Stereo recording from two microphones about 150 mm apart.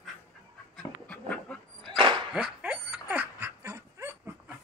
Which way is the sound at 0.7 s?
10° left (ahead or behind).